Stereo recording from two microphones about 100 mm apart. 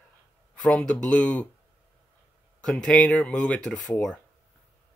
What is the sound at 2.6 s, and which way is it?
Speech, 5° left (ahead or behind).